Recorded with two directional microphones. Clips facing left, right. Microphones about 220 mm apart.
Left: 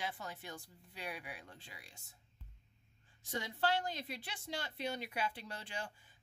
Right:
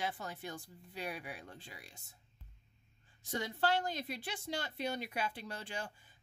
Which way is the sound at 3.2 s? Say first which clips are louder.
Right 2 dB; 45° right (ahead or behind).